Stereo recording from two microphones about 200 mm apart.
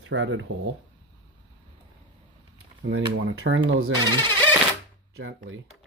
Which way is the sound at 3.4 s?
70° right (ahead or behind).